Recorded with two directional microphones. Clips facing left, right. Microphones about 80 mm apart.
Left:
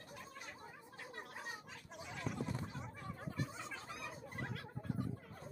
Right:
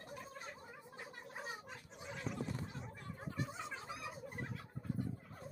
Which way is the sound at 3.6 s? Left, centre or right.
Centre.